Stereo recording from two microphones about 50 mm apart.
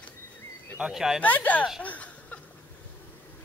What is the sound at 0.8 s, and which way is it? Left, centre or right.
Speech, centre.